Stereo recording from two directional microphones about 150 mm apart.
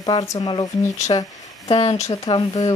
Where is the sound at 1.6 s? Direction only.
45° left (ahead or behind).